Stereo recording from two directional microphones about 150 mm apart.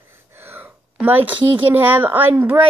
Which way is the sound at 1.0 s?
15° right (ahead or behind).